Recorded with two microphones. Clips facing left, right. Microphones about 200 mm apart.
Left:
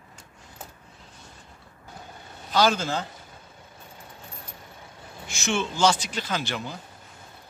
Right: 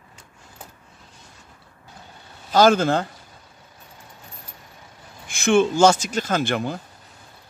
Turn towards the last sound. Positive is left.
turn(degrees=-55)  # may be behind; listen again after turning